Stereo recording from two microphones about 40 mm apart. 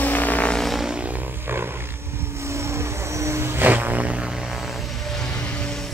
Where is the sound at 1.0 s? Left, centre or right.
Right.